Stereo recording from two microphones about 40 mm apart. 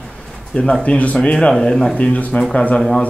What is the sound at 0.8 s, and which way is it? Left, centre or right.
Speech, left.